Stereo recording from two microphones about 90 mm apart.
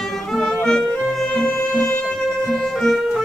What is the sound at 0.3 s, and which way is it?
Music, 10° left (ahead or behind).